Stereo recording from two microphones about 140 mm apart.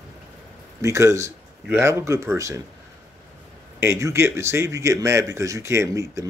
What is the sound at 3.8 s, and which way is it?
Speech, 20° right (ahead or behind).